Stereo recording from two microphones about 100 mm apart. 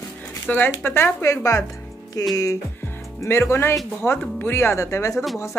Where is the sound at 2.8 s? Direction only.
25° left (ahead or behind).